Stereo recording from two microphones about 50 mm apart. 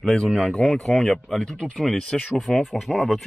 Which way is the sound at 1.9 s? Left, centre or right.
Centre.